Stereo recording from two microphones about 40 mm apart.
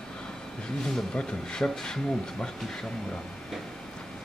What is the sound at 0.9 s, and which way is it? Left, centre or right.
Speech, left.